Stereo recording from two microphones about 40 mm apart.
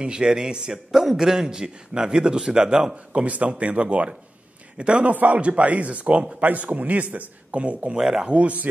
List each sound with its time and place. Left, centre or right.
0.0 s a man's voice: right
3.3 s a man's voice: right
5.0 s a man's voice: right
7.5 s a man's voice: right
8.0 s a man's voice: centre
8.3 s a man's voice: right